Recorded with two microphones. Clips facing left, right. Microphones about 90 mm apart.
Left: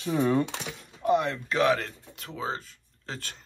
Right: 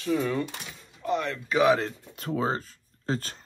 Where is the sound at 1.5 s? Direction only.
15° right (ahead or behind).